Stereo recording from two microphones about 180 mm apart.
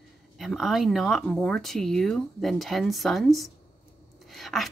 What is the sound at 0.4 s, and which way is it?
A woman's voice, centre (ahead or behind).